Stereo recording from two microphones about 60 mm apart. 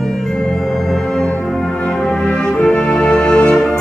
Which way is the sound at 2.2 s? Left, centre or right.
Centre.